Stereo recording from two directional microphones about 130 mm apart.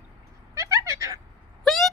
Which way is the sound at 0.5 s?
25° right (ahead or behind).